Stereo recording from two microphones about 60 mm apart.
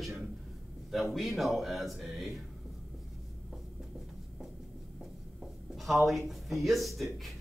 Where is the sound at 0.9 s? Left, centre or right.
Centre.